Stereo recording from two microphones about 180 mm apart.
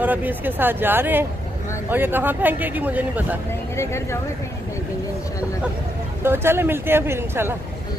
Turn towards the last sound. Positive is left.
turn(degrees=-15)  # may be behind; listen again after turning